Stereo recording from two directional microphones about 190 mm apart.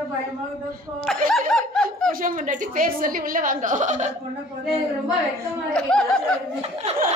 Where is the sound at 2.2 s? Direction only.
45° right (ahead or behind).